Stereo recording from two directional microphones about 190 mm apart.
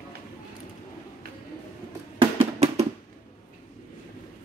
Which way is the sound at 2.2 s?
30° right (ahead or behind).